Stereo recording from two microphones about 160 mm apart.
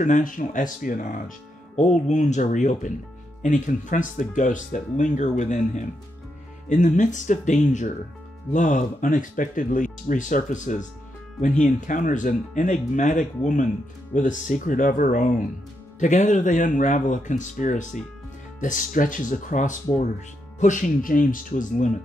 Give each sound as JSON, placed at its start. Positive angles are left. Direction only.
{"t": 0.0, "sound": "speech", "side_deg": 55}